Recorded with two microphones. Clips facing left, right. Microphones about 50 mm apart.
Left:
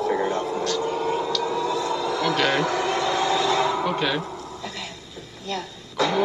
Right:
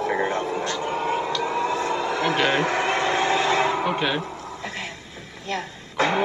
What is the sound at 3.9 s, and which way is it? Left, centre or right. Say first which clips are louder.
Speech: even; centre.